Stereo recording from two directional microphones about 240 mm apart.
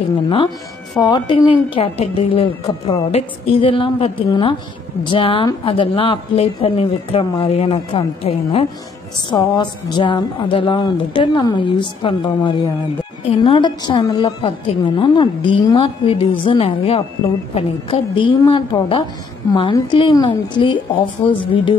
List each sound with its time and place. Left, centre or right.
0.9 s a woman's voice: centre